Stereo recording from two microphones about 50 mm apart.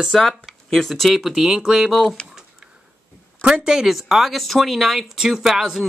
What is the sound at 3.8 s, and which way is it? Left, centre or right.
Speech, centre.